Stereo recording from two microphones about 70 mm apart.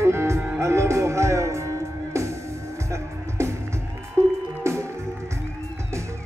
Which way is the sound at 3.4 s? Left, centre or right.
Right.